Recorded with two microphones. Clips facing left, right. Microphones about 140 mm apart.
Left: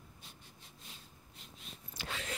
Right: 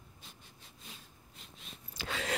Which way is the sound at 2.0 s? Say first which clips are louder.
Right 5 dB; 90° right.